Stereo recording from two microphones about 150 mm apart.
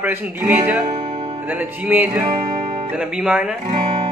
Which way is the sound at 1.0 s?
35° right (ahead or behind).